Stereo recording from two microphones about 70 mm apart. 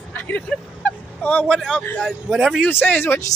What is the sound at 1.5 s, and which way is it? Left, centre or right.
Speech, centre.